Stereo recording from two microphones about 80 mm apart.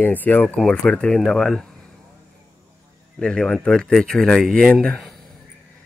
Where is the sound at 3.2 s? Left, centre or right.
Centre.